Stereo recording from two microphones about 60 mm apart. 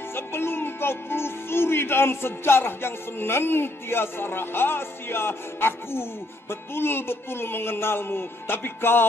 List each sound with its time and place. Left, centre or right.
0.1 s music: left